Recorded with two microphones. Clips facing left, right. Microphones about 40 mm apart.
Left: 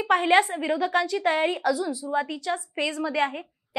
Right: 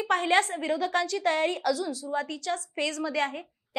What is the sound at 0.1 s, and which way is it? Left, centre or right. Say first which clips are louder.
A woman's voice: left 4 dB; centre.